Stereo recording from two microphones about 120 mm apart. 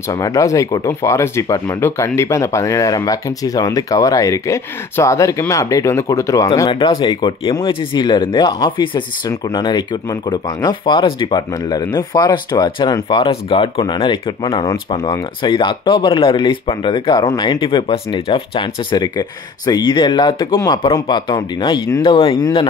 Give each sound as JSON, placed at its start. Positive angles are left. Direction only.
{"t": 0.1, "sound": "speech", "side_deg": 30}
{"t": 6.7, "sound": "speech", "side_deg": 40}